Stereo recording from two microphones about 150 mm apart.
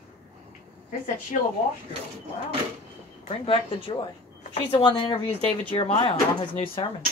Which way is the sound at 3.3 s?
40° left (ahead or behind).